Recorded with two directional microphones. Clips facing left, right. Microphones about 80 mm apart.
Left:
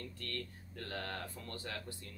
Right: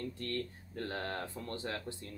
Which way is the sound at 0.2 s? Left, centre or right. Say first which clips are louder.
Right 6 dB; right.